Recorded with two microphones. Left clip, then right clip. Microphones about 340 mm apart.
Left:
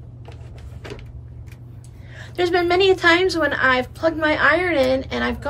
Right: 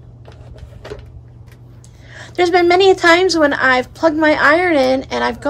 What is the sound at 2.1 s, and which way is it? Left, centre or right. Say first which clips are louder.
A woman's voice: right 6 dB; right.